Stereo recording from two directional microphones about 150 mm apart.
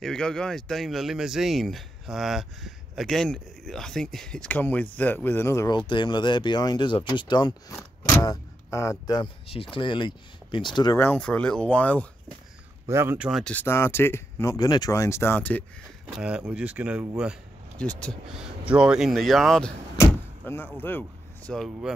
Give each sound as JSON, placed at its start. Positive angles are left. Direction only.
{"t": 0.0, "sound": "speech", "side_deg": 5}
{"t": 11.0, "sound": "speech", "side_deg": 10}
{"t": 12.8, "sound": "speech", "side_deg": -15}
{"t": 13.3, "sound": "speech", "side_deg": 5}
{"t": 16.1, "sound": "speech", "side_deg": -5}
{"t": 17.7, "sound": "speech", "side_deg": 5}
{"t": 18.7, "sound": "speech", "side_deg": -5}
{"t": 20.0, "sound": "speech", "side_deg": 15}